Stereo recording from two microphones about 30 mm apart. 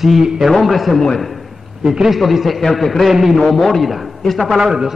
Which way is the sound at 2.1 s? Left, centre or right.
Centre.